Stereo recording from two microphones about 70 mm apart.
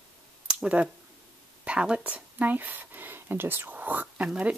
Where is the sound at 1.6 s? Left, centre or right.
Centre.